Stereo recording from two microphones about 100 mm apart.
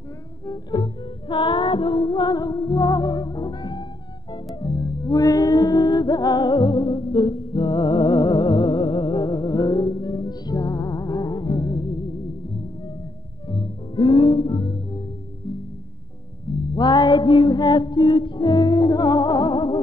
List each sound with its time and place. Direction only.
0.5 s music: 50° left (ahead or behind)
5.1 s music: 40° left (ahead or behind)
13.5 s music: 55° left (ahead or behind)
16.7 s music: 45° left (ahead or behind)